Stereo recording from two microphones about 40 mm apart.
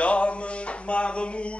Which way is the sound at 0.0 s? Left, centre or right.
Left.